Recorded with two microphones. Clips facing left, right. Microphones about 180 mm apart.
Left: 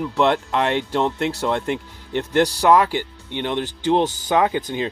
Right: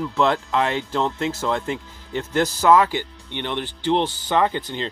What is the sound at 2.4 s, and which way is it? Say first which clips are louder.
Speech: left 1 dB; 15° left (ahead or behind).